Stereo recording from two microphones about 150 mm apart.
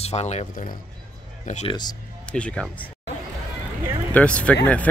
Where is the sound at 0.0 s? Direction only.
45° left (ahead or behind).